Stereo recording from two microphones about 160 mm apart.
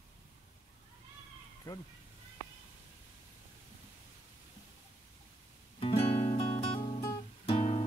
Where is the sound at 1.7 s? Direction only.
25° left (ahead or behind).